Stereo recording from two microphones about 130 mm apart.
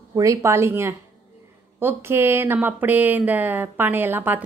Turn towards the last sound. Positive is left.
turn(degrees=-15)  # may be behind; listen again after turning